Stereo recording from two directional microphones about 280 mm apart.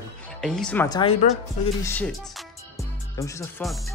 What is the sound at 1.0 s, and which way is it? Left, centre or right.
Speech, left.